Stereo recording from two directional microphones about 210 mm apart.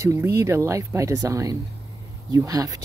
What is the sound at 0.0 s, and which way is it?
Speech, 15° right (ahead or behind).